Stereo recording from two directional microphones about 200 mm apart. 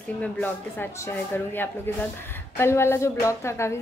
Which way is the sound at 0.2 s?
10° left (ahead or behind).